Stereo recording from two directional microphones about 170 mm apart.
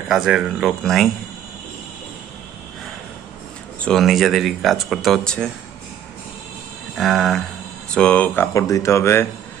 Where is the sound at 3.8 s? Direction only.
Centre (ahead or behind).